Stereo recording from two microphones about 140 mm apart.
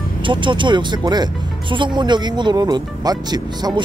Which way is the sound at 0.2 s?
35° right (ahead or behind).